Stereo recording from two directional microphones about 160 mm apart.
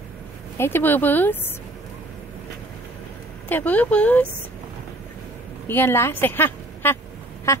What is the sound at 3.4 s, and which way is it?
Speech, 10° left (ahead or behind).